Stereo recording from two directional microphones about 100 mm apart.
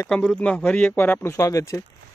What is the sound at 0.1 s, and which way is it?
Speech, 5° left (ahead or behind).